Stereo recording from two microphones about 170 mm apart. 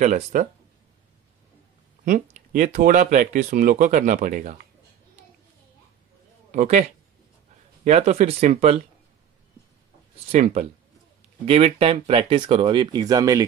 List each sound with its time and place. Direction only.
0.0 s speech: 50° right (ahead or behind)
2.0 s speech: 50° right (ahead or behind)
6.5 s speech: 45° right (ahead or behind)
10.3 s speech: 40° right (ahead or behind); by 13.5 s 20° right (ahead or behind)